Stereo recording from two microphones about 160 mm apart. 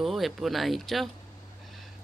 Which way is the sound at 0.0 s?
Centre (ahead or behind).